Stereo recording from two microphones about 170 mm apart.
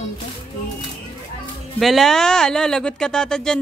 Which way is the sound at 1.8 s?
Centre (ahead or behind).